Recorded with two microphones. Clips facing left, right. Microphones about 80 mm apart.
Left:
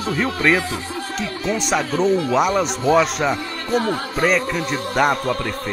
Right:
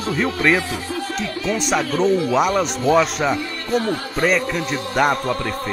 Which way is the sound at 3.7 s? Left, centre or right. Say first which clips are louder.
Even; left.